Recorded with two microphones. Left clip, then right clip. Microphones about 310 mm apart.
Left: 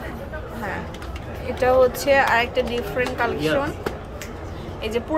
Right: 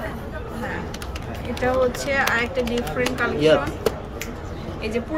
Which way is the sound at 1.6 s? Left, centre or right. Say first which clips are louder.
Left 4 dB; centre.